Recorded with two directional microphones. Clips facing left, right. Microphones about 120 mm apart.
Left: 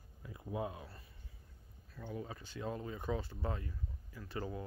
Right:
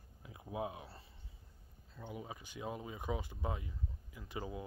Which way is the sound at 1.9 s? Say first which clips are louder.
Left 2 dB; 15° right (ahead or behind).